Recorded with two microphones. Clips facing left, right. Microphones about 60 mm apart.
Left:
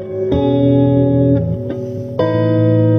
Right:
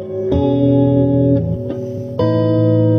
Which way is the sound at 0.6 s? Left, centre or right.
Left.